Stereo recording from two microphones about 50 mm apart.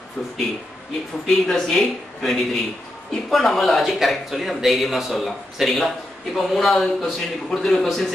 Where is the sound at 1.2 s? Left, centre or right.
Centre.